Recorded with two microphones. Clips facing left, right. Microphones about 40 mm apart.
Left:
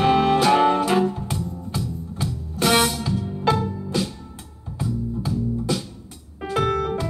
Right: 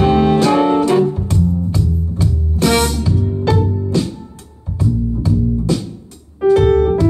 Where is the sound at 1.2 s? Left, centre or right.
Centre.